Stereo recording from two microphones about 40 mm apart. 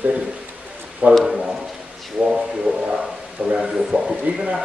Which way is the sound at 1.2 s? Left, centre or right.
Centre.